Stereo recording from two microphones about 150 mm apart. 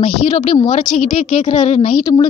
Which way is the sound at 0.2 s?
45° left (ahead or behind).